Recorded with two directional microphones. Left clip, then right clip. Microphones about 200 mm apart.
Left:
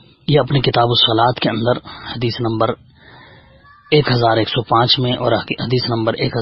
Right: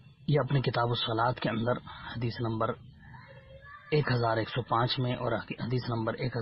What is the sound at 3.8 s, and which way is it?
Speech, 35° left (ahead or behind).